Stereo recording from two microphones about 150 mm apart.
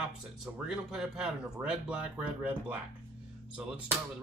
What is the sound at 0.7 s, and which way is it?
Speech, 5° right (ahead or behind).